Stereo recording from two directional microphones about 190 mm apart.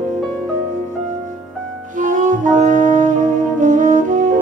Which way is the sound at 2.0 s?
45° right (ahead or behind).